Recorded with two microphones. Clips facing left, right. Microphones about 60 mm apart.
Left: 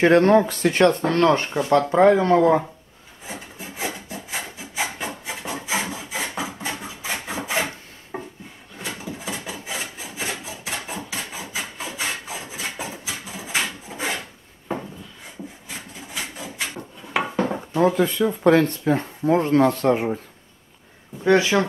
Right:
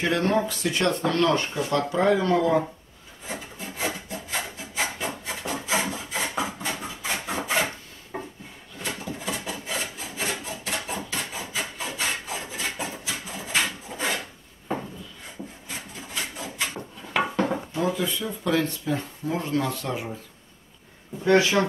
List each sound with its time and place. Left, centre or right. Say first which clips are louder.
0.0 s speech: left 8 dB; left
3.3 s rub: even; centre
6.8 s wood: left 1 dB; centre
16.1 s printer: left 1 dB; centre
17.7 s speech: left 10 dB; left
21.2 s speech: left 2 dB; left